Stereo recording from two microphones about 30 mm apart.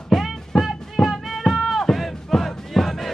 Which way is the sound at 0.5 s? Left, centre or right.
Centre.